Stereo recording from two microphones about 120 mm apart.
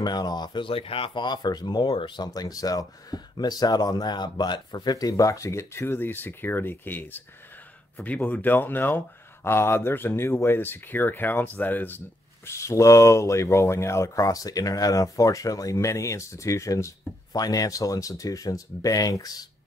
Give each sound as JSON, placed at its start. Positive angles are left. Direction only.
{"t": 0.0, "sound": "speech", "side_deg": 35}